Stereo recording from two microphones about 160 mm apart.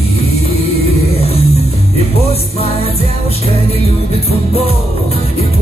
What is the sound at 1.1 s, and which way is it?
Music, 35° left (ahead or behind).